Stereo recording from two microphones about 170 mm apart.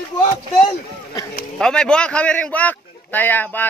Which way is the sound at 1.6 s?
5° left (ahead or behind).